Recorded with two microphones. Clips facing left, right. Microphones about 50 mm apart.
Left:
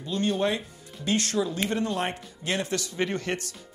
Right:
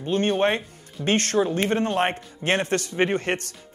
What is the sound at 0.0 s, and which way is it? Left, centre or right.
Speech, right.